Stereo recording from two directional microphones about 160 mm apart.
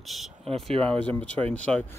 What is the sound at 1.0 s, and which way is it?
Speech, 10° left (ahead or behind).